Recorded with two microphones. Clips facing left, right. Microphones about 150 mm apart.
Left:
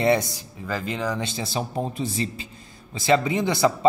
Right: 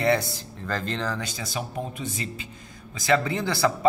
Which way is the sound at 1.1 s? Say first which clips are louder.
Left 4 dB; 25° left (ahead or behind).